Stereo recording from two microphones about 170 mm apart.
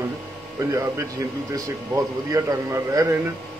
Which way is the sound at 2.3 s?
20° right (ahead or behind).